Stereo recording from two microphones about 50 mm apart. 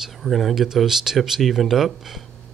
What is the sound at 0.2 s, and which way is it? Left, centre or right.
Speech, centre.